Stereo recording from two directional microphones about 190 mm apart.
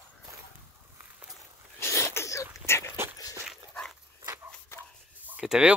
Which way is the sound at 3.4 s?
Centre (ahead or behind).